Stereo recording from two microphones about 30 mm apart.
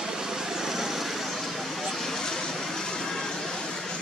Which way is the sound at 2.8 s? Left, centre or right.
Left.